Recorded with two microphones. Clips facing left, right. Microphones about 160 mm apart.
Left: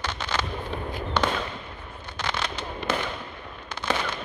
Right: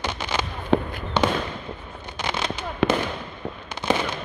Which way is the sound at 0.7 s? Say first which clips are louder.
Right 16 dB; 90° right.